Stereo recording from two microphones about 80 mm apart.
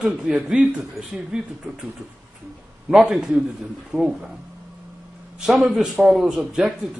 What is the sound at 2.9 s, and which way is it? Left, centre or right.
Speech, centre.